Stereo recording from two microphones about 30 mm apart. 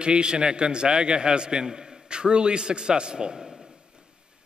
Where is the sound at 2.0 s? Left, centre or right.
Right.